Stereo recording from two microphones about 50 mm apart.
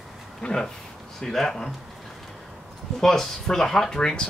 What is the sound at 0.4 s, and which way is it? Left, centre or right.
Speech, centre.